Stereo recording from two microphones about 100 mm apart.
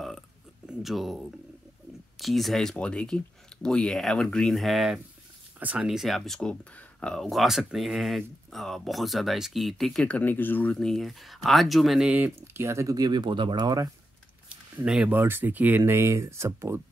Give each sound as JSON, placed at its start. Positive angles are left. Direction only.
{"t": 0.7, "sound": "speech", "side_deg": 0}
{"t": 5.6, "sound": "speech", "side_deg": -15}
{"t": 5.9, "sound": "speech", "side_deg": 0}
{"t": 10.0, "sound": "speech", "side_deg": 15}
{"t": 12.1, "sound": "speech", "side_deg": -20}
{"t": 14.5, "sound": "a sound", "side_deg": -10}
{"t": 15.1, "sound": "speech", "side_deg": -20}